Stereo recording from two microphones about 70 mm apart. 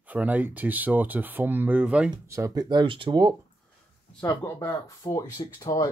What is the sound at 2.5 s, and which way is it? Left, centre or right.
Speech, right.